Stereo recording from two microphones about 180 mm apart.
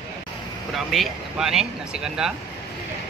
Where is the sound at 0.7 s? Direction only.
Centre (ahead or behind).